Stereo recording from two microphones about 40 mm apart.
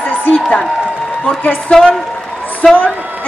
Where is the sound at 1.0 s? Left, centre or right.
Left.